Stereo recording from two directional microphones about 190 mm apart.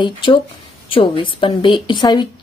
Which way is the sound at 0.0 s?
25° left (ahead or behind).